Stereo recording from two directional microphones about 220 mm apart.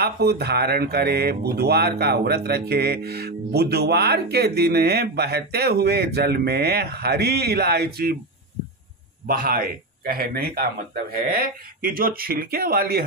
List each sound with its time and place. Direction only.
0.0 s speech: 45° right (ahead or behind)
9.3 s speech: 40° right (ahead or behind)